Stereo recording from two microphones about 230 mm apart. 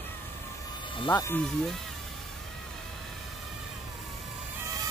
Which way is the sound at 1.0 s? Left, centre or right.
Centre.